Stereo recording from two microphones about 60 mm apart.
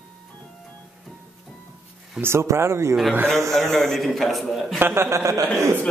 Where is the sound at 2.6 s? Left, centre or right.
Right.